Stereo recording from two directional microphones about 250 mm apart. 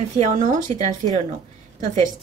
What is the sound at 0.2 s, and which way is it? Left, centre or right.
Speech, right.